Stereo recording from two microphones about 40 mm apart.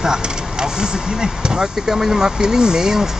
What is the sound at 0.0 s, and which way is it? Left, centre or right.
Speech, centre.